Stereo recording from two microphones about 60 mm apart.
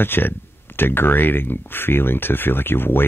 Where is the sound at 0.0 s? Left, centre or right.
Left.